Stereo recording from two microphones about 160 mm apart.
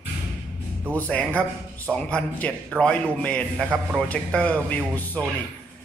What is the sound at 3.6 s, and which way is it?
Speech, 5° right (ahead or behind).